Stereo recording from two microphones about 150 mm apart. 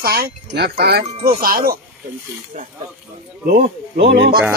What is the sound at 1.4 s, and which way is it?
Speech, 75° right (ahead or behind).